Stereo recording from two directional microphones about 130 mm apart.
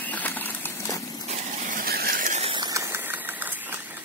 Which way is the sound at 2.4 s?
40° right (ahead or behind).